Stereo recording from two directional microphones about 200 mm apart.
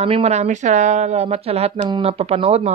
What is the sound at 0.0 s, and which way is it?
Speech, 30° right (ahead or behind).